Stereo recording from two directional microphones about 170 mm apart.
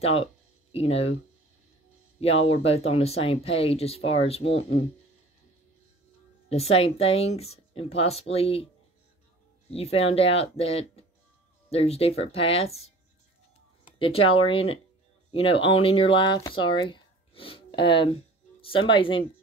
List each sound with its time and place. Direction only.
0.0 s speech: 35° left (ahead or behind)
2.1 s speech: 35° left (ahead or behind)
6.5 s speech: 35° left (ahead or behind)
9.7 s speech: 35° left (ahead or behind)